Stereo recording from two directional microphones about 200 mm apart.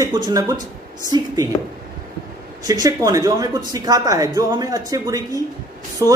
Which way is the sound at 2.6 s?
20° right (ahead or behind).